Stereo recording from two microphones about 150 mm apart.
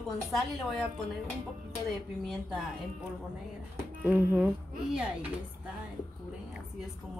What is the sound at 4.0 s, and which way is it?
Speech, 15° right (ahead or behind).